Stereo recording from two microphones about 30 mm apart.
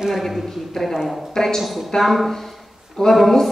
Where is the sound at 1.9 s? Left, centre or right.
Centre.